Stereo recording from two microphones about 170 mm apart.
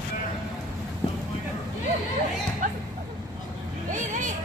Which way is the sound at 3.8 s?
50° right (ahead or behind).